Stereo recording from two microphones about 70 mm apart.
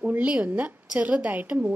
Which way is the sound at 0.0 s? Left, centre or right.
Centre.